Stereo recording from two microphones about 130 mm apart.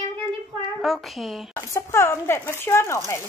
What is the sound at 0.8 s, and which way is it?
Child singing, centre (ahead or behind).